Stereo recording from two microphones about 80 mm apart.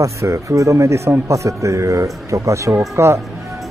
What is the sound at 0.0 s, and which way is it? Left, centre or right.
Speech, right.